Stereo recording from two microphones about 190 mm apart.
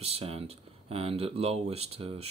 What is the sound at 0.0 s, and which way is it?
Speech, 30° right (ahead or behind).